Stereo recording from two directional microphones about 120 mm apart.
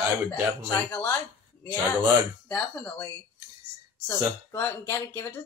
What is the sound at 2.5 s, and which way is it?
Speech, 10° left (ahead or behind).